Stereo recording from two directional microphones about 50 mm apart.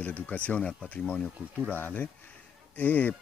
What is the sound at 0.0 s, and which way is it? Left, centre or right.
Speech, left.